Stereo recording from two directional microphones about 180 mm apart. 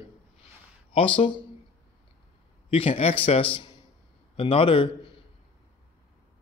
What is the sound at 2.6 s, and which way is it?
A man's voice, 30° left (ahead or behind).